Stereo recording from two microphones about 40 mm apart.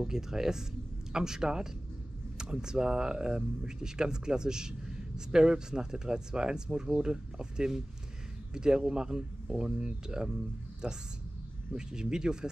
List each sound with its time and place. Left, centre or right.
0.0 s speech: centre